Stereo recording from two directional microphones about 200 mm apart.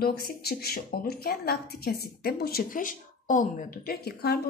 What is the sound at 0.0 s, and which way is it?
A woman's voice, 50° left (ahead or behind).